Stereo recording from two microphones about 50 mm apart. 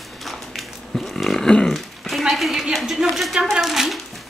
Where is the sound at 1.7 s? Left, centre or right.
Centre.